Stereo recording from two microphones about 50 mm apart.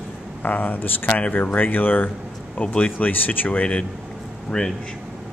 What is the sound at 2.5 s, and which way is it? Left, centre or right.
Speech, left.